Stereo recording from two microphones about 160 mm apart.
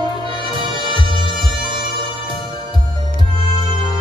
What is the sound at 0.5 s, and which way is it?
Music, 30° right (ahead or behind).